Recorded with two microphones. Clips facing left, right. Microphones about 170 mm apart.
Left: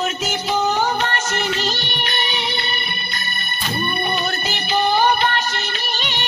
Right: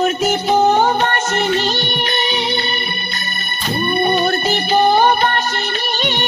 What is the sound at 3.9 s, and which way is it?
Music, 45° right (ahead or behind).